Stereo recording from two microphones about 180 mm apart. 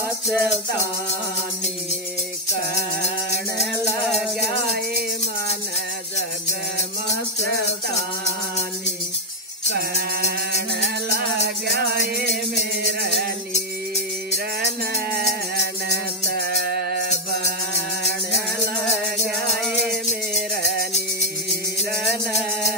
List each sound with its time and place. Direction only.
0.3 s music: 5° right (ahead or behind)
3.7 s music: 15° left (ahead or behind)
9.8 s music: 60° right (ahead or behind)
16.3 s music: 60° right (ahead or behind)